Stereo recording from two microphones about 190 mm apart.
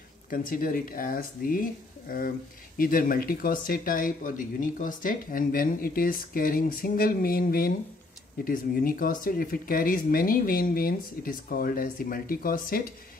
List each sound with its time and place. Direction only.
0.3 s speech: 50° left (ahead or behind)